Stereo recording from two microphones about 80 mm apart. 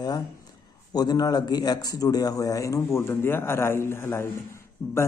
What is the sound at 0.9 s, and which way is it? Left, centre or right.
A man's voice, left.